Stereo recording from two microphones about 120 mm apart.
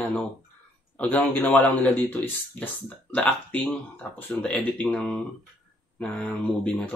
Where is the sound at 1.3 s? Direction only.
15° left (ahead or behind).